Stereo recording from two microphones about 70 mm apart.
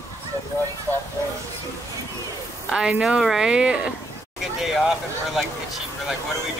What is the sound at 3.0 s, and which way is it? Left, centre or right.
Speech, centre.